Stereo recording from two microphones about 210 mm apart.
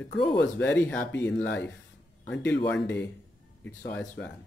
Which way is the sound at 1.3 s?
60° left (ahead or behind).